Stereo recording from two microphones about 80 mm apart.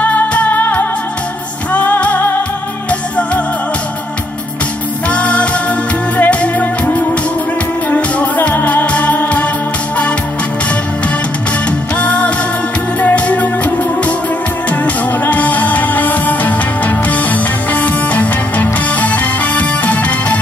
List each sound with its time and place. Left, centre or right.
0.0 s music: centre
5.1 s music: centre
12.0 s music: centre
15.2 s music: centre